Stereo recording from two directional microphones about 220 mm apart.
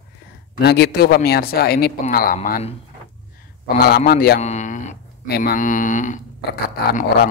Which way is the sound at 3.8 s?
45° left (ahead or behind).